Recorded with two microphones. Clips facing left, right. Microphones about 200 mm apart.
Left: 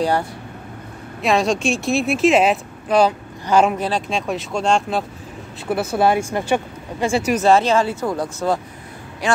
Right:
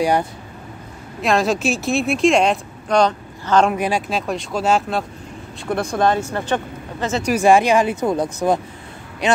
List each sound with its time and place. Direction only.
1.2 s speech: centre (ahead or behind)
3.7 s speech: 10° right (ahead or behind)
4.3 s speech: centre (ahead or behind)
7.3 s speech: 15° right (ahead or behind)